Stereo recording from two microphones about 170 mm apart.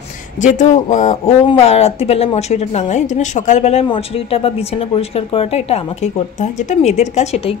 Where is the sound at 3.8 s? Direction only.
30° left (ahead or behind).